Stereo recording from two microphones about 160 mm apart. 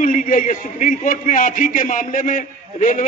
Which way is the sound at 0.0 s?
55° left (ahead or behind).